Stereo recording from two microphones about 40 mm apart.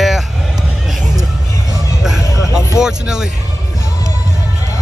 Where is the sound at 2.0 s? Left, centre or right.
Centre.